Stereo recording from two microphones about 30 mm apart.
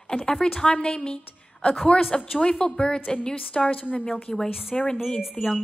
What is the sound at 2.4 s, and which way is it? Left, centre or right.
Speech, left.